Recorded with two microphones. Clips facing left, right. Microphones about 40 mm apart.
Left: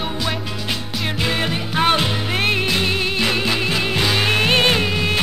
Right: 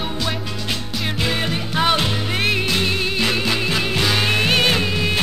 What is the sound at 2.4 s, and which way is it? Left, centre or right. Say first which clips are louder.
Music: left 1 dB; left.